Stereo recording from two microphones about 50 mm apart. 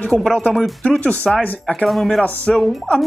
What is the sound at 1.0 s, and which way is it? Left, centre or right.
Speech, left.